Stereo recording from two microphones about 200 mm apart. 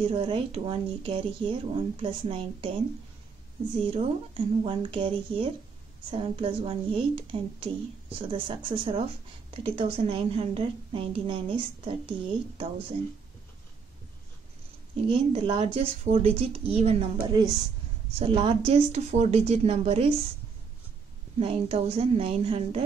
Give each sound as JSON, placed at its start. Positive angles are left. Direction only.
{"t": 0.0, "sound": "speech", "side_deg": -25}
{"t": 3.8, "sound": "speech", "side_deg": -30}
{"t": 15.0, "sound": "a woman's voice", "side_deg": -25}
{"t": 21.4, "sound": "speech", "side_deg": -30}